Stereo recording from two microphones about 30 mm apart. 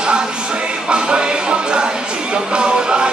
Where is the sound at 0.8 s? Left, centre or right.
Right.